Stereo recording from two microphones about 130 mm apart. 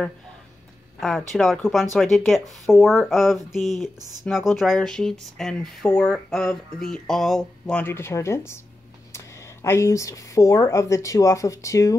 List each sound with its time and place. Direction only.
1.0 s speech: centre (ahead or behind)
7.8 s speech: 20° left (ahead or behind)